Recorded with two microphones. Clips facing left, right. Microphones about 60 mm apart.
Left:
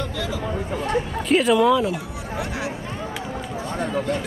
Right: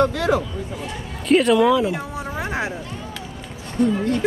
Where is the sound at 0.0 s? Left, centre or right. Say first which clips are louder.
Right 10 dB; right.